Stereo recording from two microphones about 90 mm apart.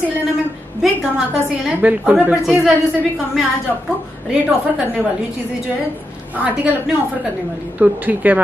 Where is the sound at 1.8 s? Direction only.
15° right (ahead or behind).